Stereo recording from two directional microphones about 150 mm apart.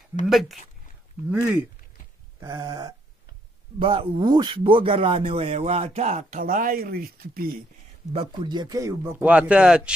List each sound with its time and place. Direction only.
0.3 s a man's voice: centre (ahead or behind)
2.4 s a sound: 25° right (ahead or behind)
3.8 s speech: 35° right (ahead or behind)
6.4 s speech: 70° right (ahead or behind)
8.1 s a man's voice: 35° right (ahead or behind); by 9.9 s 5° right (ahead or behind)